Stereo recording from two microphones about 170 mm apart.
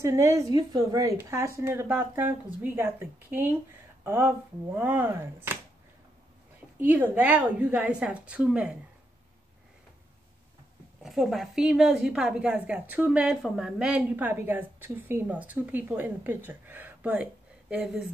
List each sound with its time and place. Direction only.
0.0 s a woman's voice: 15° right (ahead or behind)
6.8 s a woman's voice: 10° right (ahead or behind)
11.0 s a woman's voice: centre (ahead or behind)